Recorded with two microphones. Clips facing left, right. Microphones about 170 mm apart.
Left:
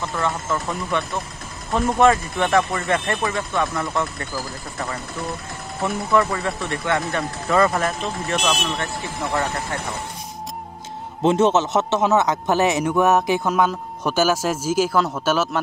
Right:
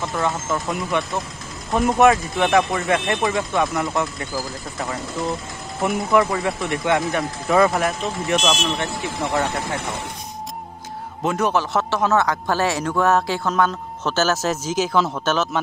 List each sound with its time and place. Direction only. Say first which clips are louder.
0.2 s speech: even; 15° right (ahead or behind)
5.8 s speech: right 2 dB; 15° right (ahead or behind)
11.2 s speech: left 4 dB; 25° left (ahead or behind); by 15.6 s 5° left (ahead or behind)